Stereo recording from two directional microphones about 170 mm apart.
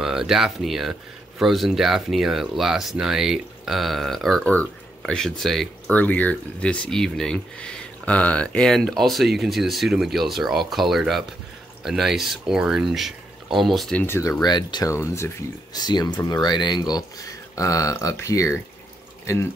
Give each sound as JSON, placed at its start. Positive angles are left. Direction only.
{"t": 0.0, "sound": "speech", "side_deg": -5}
{"t": 14.0, "sound": "speech", "side_deg": 20}